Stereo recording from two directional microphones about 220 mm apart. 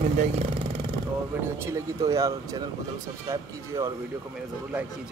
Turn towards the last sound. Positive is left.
turn(degrees=-15)  # may be behind; listen again after turning